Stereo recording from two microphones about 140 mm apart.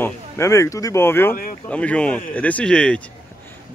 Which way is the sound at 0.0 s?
20° left (ahead or behind).